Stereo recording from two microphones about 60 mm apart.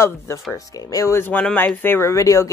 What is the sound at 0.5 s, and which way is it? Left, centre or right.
Speech, left.